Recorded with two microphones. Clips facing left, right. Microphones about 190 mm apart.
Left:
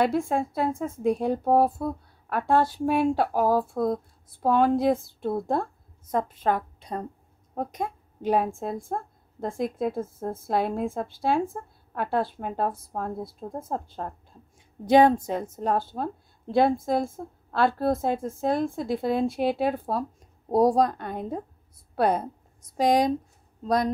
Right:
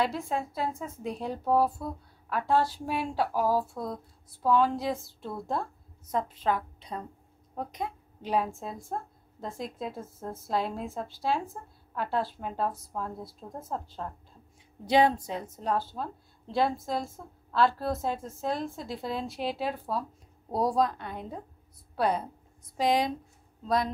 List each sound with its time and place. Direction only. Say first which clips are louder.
0.0 s a woman's voice: left 6 dB; 55° left (ahead or behind)